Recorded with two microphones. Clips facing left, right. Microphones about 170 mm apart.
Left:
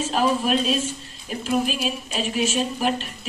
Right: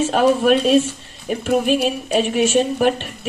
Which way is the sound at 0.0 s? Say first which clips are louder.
Right 7 dB; 65° right (ahead or behind).